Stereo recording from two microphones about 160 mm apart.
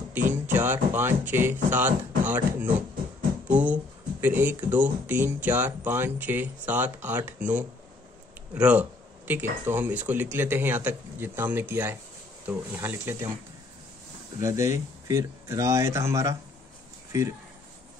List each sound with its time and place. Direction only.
0.1 s speech: 10° right (ahead or behind)
14.4 s speech: 20° right (ahead or behind)